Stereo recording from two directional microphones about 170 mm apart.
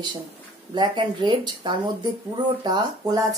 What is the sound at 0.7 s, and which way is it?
Speech, 25° right (ahead or behind).